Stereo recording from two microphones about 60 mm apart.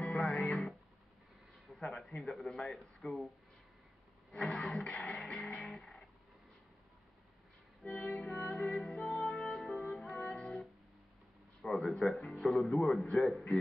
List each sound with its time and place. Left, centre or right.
0.0 s music: centre
1.7 s speech: centre
4.5 s music: centre
7.8 s music: left
8.5 s music: centre
11.6 s a sound: centre
11.9 s speech: centre